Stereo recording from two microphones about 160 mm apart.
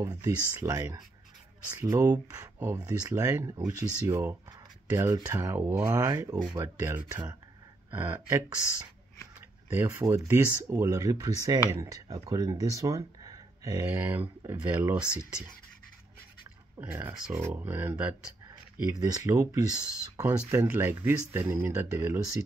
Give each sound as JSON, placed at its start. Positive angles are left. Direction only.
{"t": 0.0, "sound": "speech", "side_deg": -20}
{"t": 9.8, "sound": "speech", "side_deg": -20}
{"t": 16.8, "sound": "speech", "side_deg": -10}
{"t": 18.9, "sound": "speech", "side_deg": -25}